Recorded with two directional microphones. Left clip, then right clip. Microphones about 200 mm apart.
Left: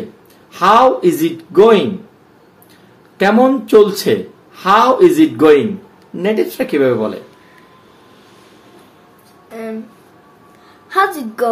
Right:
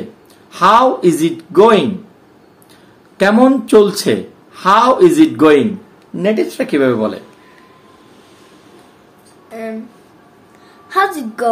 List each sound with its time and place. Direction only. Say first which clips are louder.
0.5 s speech: even; 15° right (ahead or behind)
3.2 s speech: right 1 dB; 20° right (ahead or behind)
9.5 s a sound: right 1 dB; centre (ahead or behind)
10.9 s a woman's voice: even; centre (ahead or behind)